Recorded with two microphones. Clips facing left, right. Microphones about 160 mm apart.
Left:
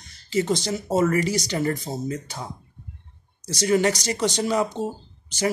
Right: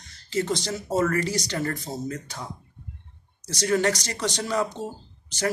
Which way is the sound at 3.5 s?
15° left (ahead or behind).